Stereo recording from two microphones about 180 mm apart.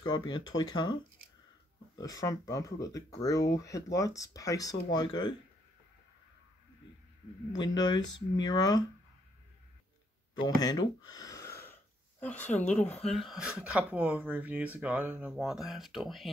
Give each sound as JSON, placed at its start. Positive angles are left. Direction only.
{"t": 0.0, "sound": "speech", "side_deg": 25}
{"t": 2.0, "sound": "speech", "side_deg": 20}
{"t": 7.5, "sound": "speech", "side_deg": 20}
{"t": 10.4, "sound": "a sound", "side_deg": 20}
{"t": 12.6, "sound": "speech", "side_deg": 5}